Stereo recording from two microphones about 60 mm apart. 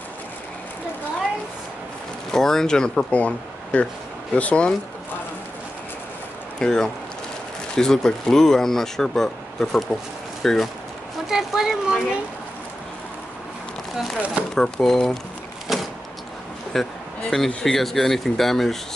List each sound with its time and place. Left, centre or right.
2.3 s speech: centre
3.2 s speech: left
6.6 s speech: centre
11.2 s a woman's voice: centre
14.5 s speech: centre
15.7 s vehicle: centre
16.7 s speech: centre
17.3 s speech: centre
17.6 s speech: centre